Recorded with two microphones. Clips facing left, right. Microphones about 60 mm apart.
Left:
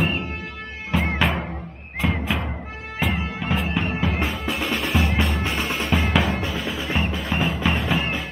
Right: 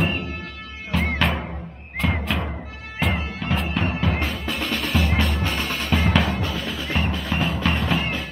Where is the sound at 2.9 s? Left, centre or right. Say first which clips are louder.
Even; centre.